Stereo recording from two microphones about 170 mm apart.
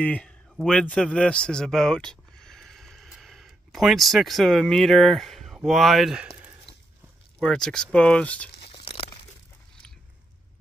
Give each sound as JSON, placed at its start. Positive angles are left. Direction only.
{"t": 0.0, "sound": "a man's voice", "side_deg": 10}
{"t": 8.5, "sound": "crumpling", "side_deg": 30}